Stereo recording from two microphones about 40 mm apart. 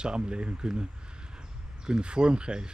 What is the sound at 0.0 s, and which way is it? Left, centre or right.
Speech, right.